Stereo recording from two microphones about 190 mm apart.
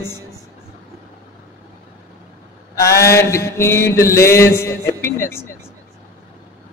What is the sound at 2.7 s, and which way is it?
Mantra, 15° left (ahead or behind).